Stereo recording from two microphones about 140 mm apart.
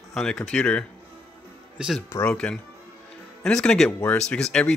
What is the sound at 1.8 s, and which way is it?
Speech, 5° right (ahead or behind).